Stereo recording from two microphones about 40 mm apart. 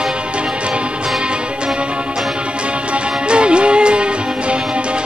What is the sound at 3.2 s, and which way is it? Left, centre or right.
Music, right.